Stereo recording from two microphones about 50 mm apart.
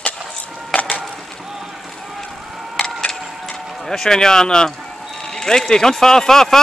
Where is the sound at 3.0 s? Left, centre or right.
Centre.